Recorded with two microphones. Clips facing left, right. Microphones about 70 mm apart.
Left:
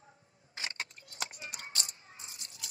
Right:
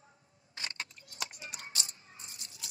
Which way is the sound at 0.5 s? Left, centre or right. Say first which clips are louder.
Left 2 dB; left.